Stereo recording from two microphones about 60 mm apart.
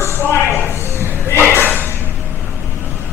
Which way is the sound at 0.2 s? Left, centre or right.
Left.